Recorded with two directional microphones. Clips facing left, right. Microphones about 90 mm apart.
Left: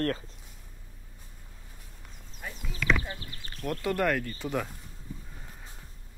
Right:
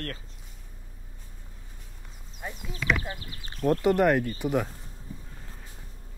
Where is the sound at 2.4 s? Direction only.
25° right (ahead or behind).